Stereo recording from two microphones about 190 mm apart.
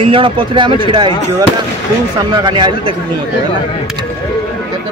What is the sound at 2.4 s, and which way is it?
Speech, 25° right (ahead or behind).